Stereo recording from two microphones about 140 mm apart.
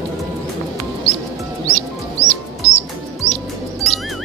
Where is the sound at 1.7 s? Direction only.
50° left (ahead or behind).